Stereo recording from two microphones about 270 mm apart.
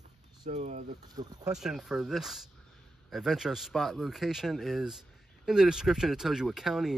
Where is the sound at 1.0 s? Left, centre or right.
Centre.